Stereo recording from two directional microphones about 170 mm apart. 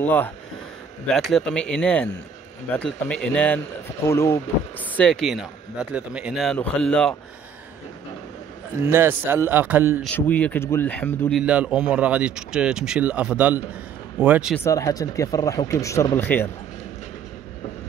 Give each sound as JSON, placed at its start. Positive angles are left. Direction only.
{"t": 0.0, "sound": "speech", "side_deg": 10}
{"t": 8.9, "sound": "speech", "side_deg": -10}
{"t": 10.0, "sound": "speech", "side_deg": 10}
{"t": 11.4, "sound": "speech", "side_deg": -5}
{"t": 14.6, "sound": "speech", "side_deg": 20}